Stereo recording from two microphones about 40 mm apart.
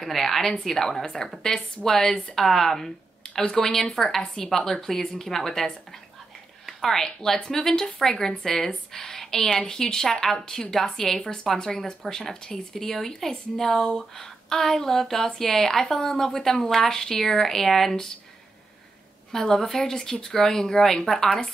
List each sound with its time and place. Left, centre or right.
0.0 s speech: centre
6.6 s a sound: centre
7.1 s speech: centre
19.3 s speech: centre